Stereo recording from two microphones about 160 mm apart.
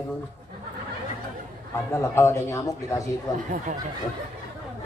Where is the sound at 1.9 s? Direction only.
15° left (ahead or behind).